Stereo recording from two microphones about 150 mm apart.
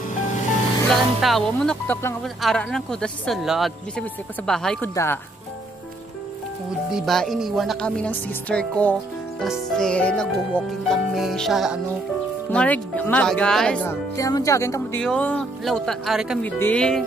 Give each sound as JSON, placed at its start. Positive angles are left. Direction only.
{"t": 0.8, "sound": "speech", "side_deg": 0}
{"t": 6.9, "sound": "speech", "side_deg": 0}
{"t": 12.5, "sound": "speech", "side_deg": 10}
{"t": 13.8, "sound": "speech", "side_deg": 20}
{"t": 15.0, "sound": "speech", "side_deg": 10}
{"t": 16.3, "sound": "speech", "side_deg": 10}